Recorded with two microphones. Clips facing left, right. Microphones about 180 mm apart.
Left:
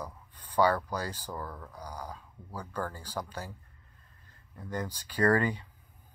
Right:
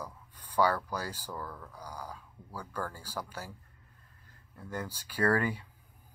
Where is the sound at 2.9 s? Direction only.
10° right (ahead or behind).